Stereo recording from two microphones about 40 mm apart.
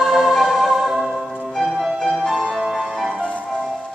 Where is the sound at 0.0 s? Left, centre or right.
Centre.